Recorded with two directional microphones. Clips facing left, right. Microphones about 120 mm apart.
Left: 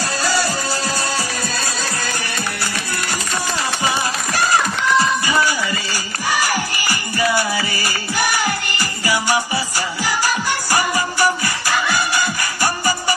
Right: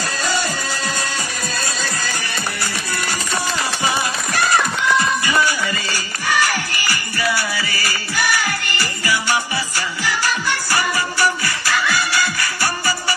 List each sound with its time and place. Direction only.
0.0 s music: 35° left (ahead or behind)
6.5 s music: 15° left (ahead or behind)
10.2 s music: 15° left (ahead or behind)